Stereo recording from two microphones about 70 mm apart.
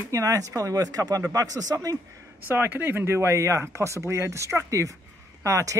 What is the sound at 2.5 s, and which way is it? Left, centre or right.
Speech, right.